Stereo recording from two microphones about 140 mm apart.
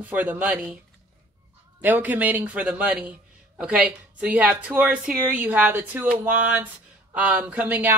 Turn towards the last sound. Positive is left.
turn(degrees=-15)  # may be behind; listen again after turning